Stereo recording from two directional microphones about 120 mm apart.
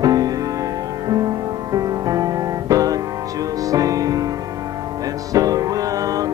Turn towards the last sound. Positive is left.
turn(degrees=-30)  # may be behind; listen again after turning